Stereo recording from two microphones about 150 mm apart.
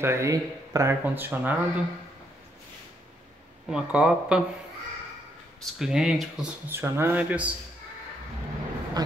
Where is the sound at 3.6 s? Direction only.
5° right (ahead or behind).